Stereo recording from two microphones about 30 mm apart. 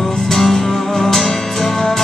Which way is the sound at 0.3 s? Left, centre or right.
Centre.